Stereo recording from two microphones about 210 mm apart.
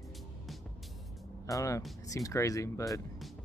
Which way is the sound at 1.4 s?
15° left (ahead or behind).